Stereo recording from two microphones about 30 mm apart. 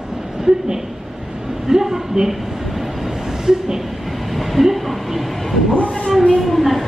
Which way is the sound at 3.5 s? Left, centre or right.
Right.